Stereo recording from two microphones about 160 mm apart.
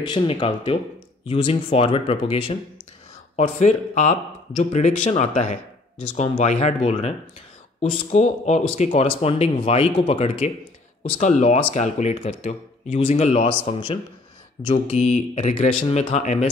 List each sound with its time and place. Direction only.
0.0 s speech: 30° left (ahead or behind)
3.3 s speech: 45° left (ahead or behind)